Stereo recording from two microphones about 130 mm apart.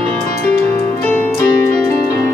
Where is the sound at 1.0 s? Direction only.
10° left (ahead or behind).